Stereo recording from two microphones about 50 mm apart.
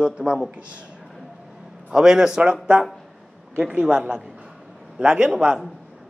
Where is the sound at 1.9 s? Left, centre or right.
Centre.